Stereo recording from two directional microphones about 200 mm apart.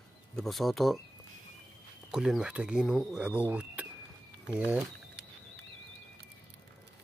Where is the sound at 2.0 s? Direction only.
Centre (ahead or behind).